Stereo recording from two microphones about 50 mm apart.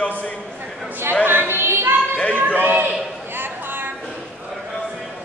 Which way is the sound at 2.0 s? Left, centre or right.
Left.